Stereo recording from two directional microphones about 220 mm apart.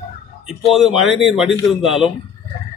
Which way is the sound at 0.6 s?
Centre (ahead or behind).